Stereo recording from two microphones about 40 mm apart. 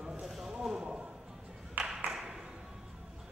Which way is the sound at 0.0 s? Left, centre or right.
Centre.